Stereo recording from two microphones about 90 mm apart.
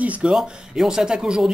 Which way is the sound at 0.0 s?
15° right (ahead or behind).